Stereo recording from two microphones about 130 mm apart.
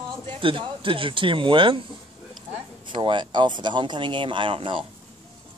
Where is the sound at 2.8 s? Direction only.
40° right (ahead or behind).